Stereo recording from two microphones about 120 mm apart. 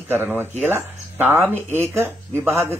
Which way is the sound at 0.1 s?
15° right (ahead or behind).